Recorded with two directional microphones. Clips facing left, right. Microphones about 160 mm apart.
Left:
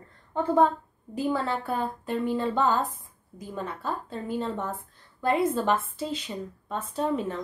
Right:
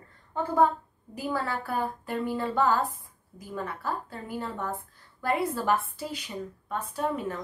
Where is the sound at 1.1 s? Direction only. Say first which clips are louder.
Left 4 dB; 20° left (ahead or behind).